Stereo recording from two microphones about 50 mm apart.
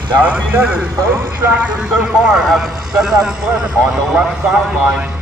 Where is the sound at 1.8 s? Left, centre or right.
Centre.